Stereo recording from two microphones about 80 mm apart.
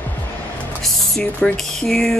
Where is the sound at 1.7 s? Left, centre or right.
Centre.